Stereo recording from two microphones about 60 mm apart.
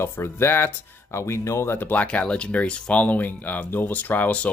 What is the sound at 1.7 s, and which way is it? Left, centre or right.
Speech, left.